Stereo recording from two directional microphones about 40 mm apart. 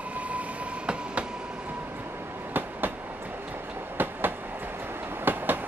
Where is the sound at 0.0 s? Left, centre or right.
Right.